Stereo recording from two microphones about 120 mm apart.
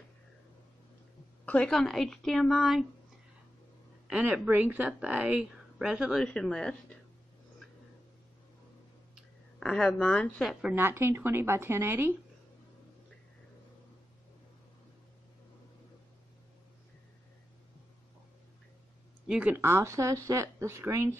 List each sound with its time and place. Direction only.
1.4 s a woman's voice: 10° left (ahead or behind)
4.1 s speech: 15° right (ahead or behind)
6.2 s speech: 5° left (ahead or behind)
9.1 s a sound: 5° left (ahead or behind)
10.4 s a woman's voice: centre (ahead or behind)
10.7 s speech: 15° right (ahead or behind)
19.2 s speech: 5° right (ahead or behind)
19.5 s speech: 20° right (ahead or behind)